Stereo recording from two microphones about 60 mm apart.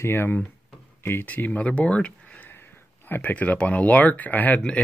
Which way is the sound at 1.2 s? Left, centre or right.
Left.